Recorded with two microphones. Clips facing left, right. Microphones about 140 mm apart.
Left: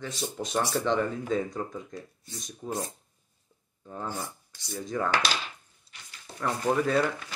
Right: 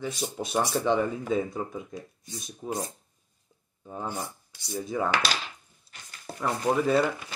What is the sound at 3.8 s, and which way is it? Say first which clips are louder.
Speech: right 1 dB; 15° right (ahead or behind).